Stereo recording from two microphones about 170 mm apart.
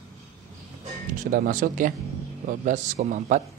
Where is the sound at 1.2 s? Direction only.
55° right (ahead or behind).